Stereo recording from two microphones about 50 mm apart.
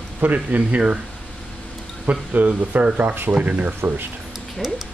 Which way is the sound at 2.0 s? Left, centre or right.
Right.